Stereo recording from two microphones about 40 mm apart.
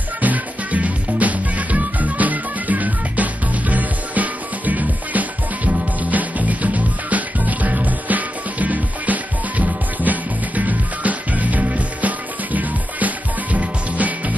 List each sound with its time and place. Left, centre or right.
0.2 s music: right